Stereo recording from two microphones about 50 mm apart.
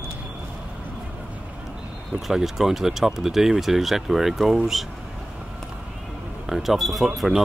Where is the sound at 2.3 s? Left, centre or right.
Centre.